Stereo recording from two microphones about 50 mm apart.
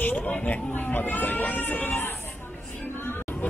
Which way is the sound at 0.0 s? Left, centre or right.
Left.